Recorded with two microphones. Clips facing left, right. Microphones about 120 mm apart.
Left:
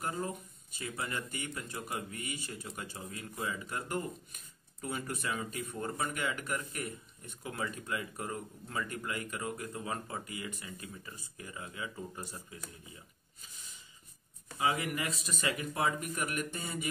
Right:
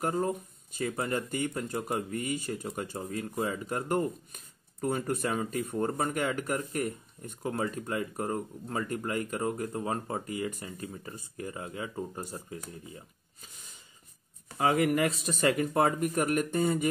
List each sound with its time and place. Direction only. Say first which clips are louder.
0.0 s speech: right 7 dB; 45° right (ahead or behind)
14.6 s speech: right 8 dB; 45° right (ahead or behind)